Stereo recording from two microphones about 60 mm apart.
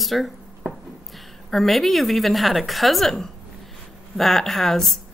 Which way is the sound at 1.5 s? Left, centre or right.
Centre.